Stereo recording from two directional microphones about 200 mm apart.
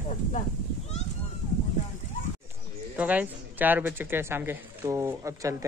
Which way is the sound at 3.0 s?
5° right (ahead or behind).